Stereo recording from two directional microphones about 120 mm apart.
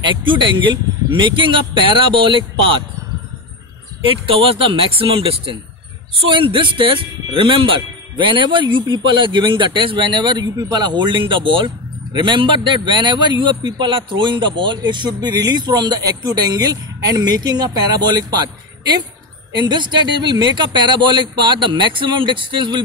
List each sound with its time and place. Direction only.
0.0 s a man's voice: 45° right (ahead or behind)
4.0 s a man's voice: 50° right (ahead or behind)